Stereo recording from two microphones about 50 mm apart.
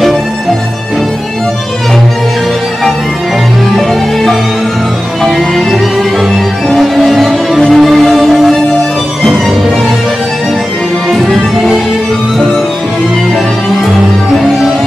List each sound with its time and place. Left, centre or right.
3.7 s music: centre
11.1 s music: centre